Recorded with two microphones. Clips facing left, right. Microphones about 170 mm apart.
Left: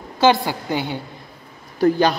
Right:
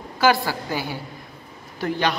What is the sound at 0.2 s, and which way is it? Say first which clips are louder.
Speech: left 3 dB; 20° left (ahead or behind).